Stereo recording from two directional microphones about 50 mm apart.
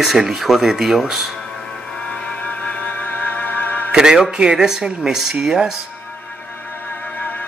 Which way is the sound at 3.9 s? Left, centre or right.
Centre.